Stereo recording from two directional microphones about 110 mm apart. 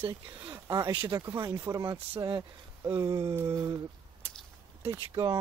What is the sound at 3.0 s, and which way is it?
Speech, 35° right (ahead or behind).